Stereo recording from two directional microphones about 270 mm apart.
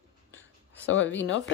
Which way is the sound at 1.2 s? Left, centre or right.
Left.